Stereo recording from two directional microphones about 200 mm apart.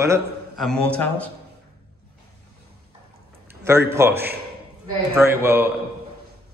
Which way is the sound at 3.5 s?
15° right (ahead or behind).